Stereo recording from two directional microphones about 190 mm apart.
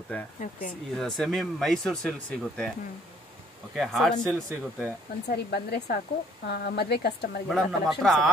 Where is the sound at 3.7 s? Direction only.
Centre (ahead or behind).